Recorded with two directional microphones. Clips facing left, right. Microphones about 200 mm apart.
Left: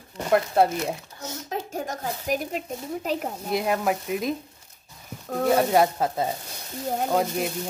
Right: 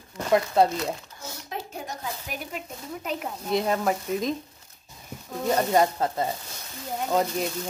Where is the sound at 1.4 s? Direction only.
45° left (ahead or behind).